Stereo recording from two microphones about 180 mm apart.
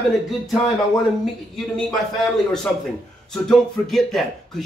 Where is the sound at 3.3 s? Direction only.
Centre (ahead or behind).